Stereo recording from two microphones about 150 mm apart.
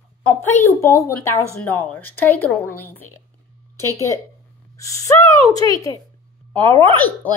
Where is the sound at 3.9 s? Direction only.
20° left (ahead or behind).